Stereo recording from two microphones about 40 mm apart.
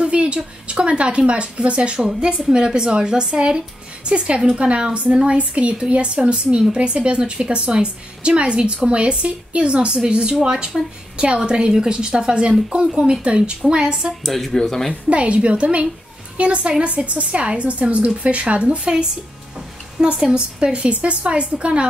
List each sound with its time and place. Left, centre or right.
0.0 s a woman's voice: right
14.2 s speech: centre
15.0 s a woman's voice: right